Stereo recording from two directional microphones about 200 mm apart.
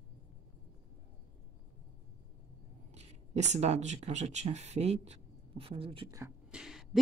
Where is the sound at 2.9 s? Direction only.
35° right (ahead or behind); by 6.3 s 15° right (ahead or behind).